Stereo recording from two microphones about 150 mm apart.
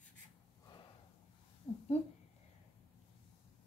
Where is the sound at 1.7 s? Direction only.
45° left (ahead or behind).